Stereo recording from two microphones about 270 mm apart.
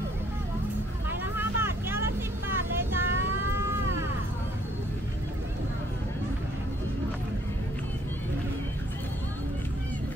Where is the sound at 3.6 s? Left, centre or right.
Centre.